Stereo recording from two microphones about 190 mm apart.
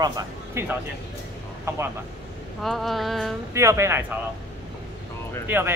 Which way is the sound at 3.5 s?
15° right (ahead or behind).